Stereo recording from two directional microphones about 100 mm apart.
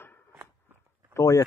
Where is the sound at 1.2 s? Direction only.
35° left (ahead or behind).